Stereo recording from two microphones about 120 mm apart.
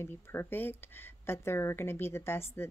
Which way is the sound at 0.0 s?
20° left (ahead or behind).